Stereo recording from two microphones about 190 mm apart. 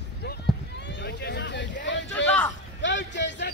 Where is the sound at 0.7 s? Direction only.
65° left (ahead or behind).